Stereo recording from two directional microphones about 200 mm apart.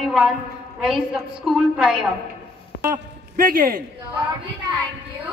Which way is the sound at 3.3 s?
45° right (ahead or behind).